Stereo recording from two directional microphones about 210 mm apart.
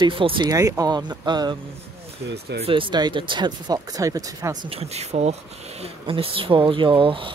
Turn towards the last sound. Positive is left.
turn(degrees=-25)  # may be behind; listen again after turning